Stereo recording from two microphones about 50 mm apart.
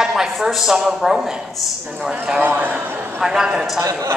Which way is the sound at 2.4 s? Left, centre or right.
Right.